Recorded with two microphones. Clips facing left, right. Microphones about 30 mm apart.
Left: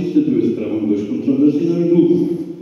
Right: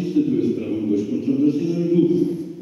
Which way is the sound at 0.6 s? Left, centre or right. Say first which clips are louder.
Left 4 dB; left.